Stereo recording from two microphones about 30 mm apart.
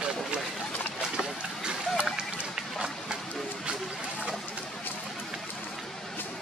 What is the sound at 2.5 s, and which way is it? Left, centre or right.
Run, right.